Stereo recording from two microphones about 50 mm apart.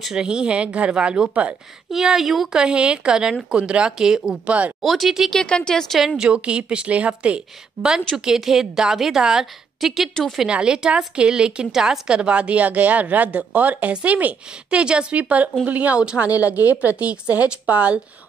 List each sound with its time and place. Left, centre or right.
0.1 s a woman's voice: centre
1.9 s a woman's voice: centre
2.5 s a woman's voice: centre
4.0 s a woman's voice: centre
4.5 s a woman's voice: right
4.8 s speech: centre
5.3 s speech: centre
6.1 s a woman's voice: right
8.3 s a woman's voice: centre
10.5 s a woman's voice: centre